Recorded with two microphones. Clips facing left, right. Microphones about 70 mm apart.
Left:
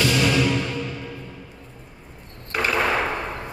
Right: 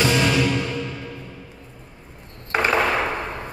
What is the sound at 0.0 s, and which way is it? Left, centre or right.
Music, right.